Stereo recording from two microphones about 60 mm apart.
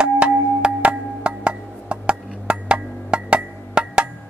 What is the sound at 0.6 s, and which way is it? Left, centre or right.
Music, centre.